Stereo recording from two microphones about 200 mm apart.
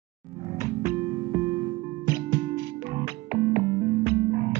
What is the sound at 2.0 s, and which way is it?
Music, 55° right (ahead or behind).